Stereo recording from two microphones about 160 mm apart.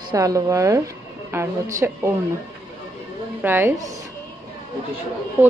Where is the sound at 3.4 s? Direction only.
15° right (ahead or behind).